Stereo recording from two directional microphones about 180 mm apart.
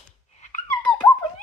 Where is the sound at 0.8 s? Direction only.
10° left (ahead or behind).